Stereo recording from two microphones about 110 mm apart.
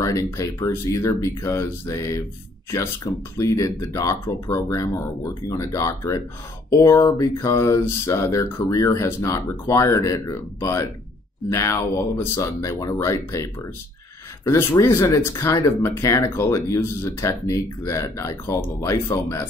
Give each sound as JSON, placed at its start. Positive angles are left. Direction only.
{"t": 0.0, "sound": "speech", "side_deg": 30}